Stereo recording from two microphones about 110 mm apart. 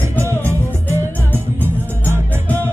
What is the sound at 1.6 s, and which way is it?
Music, 20° right (ahead or behind).